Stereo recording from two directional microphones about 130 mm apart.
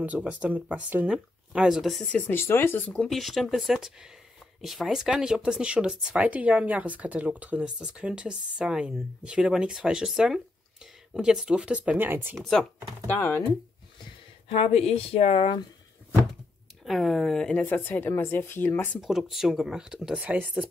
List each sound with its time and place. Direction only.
0.0 s speech: 10° right (ahead or behind)
2.2 s speech: 20° left (ahead or behind); by 12.4 s 15° right (ahead or behind)
12.4 s speech: 5° left (ahead or behind)
14.5 s speech: 50° left (ahead or behind)
16.8 s speech: centre (ahead or behind); by 18.9 s 15° left (ahead or behind)
18.9 s speech: centre (ahead or behind)